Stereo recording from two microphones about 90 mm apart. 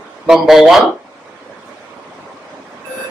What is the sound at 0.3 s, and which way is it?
Speech, 5° right (ahead or behind).